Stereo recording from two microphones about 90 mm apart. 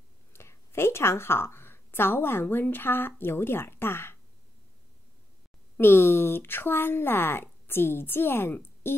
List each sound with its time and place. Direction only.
0.3 s a woman's voice: 30° left (ahead or behind)
5.8 s speech: 25° left (ahead or behind)